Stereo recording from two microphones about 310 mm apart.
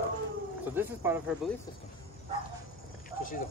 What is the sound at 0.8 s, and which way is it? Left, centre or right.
Speech, centre.